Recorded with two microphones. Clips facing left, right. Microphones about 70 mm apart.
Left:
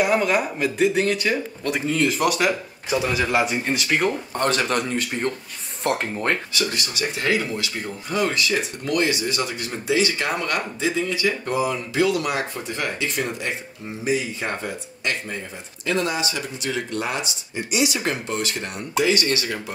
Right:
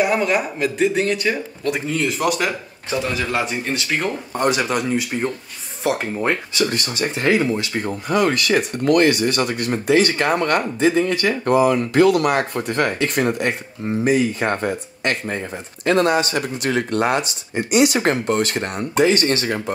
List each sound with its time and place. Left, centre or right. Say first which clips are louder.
0.0 s a man's voice: right 1 dB; centre
4.3 s a man's voice: right 2 dB; centre
6.6 s speech: right 5 dB; right
7.7 s speech: right 6 dB; right